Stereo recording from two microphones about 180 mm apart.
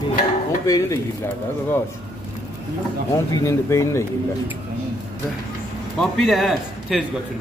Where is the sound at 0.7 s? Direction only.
20° left (ahead or behind).